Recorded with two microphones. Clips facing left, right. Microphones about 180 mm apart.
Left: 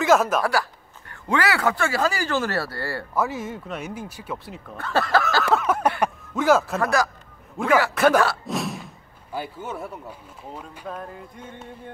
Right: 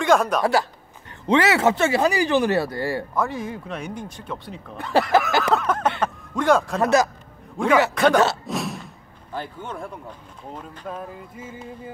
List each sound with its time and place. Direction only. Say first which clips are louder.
0.0 s speech: even; 5° left (ahead or behind)
0.4 s a man's voice: right 3 dB; 25° right (ahead or behind)
3.2 s speech: even; 5° left (ahead or behind)
4.7 s speech: right 3 dB; 15° right (ahead or behind)
5.5 s speech: left 2 dB; 5° left (ahead or behind)
6.8 s speech: right 4 dB; 20° right (ahead or behind)
7.6 s speech: right 1 dB; 5° left (ahead or behind)
10.9 s speech: right 1 dB; centre (ahead or behind)